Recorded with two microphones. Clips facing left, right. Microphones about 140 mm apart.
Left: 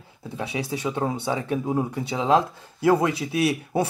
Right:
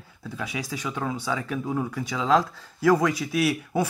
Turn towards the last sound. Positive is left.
turn(degrees=30)  # may be behind; listen again after turning